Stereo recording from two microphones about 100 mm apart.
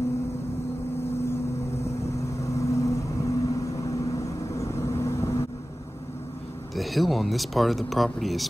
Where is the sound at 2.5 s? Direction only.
30° left (ahead or behind).